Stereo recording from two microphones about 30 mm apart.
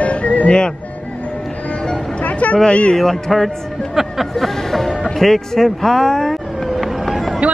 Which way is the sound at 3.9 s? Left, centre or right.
Centre.